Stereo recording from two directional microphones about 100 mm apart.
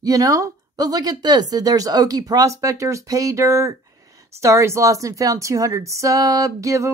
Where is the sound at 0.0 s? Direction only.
35° right (ahead or behind).